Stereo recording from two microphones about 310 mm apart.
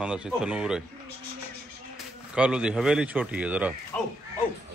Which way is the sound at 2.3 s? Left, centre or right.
Centre.